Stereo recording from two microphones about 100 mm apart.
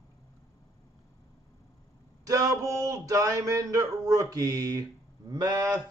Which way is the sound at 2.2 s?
35° right (ahead or behind).